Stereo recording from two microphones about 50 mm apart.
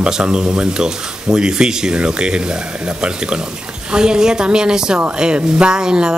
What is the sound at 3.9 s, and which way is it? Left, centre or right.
Speech, centre.